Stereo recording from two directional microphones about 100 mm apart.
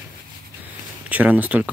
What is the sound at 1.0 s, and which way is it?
Speech, 15° right (ahead or behind).